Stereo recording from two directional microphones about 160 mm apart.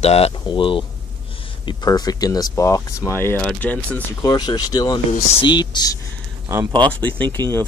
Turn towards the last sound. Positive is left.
turn(degrees=10)  # may be behind; listen again after turning